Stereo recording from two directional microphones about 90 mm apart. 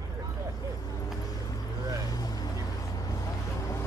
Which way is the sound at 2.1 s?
45° left (ahead or behind).